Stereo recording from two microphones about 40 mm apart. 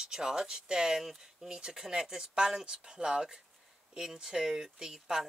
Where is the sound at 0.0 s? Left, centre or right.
Centre.